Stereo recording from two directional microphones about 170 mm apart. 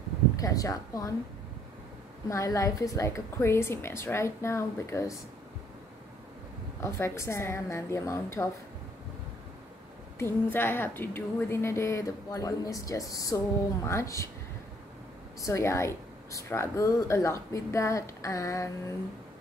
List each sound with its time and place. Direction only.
0.4 s speech: 20° left (ahead or behind)
2.2 s speech: 20° left (ahead or behind)
6.8 s speech: 15° left (ahead or behind)
10.5 s speech: 15° left (ahead or behind)
15.4 s speech: 15° left (ahead or behind)